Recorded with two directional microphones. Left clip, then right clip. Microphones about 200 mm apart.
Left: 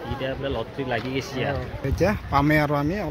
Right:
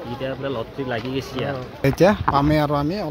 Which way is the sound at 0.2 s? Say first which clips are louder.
Right 2 dB; 25° right (ahead or behind).